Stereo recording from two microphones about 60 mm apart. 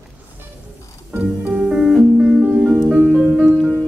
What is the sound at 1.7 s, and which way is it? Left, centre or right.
Music, centre.